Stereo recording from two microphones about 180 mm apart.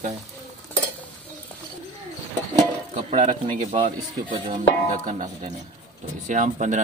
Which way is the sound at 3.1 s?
40° right (ahead or behind).